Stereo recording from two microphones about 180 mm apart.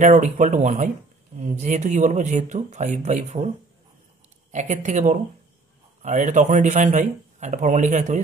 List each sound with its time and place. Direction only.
0.0 s speech: 45° right (ahead or behind)
4.5 s a man's voice: 40° right (ahead or behind)